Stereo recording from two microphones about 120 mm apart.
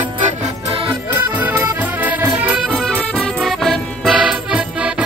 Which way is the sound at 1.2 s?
15° right (ahead or behind).